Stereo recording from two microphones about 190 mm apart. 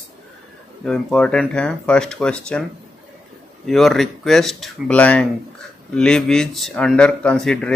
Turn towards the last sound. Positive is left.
turn(degrees=5)  # may be behind; listen again after turning